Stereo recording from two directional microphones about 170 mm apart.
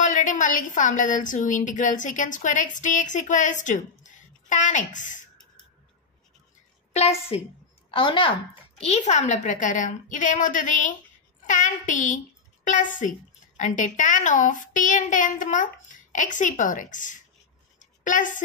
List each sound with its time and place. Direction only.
0.0 s a woman's voice: 50° left (ahead or behind)
6.9 s a woman's voice: 40° left (ahead or behind)
17.7 s a sound: 50° left (ahead or behind)